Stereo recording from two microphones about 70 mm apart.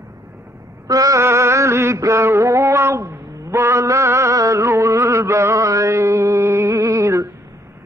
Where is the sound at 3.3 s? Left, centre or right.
Right.